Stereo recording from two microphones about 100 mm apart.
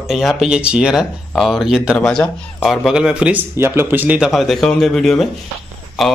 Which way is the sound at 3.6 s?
25° right (ahead or behind).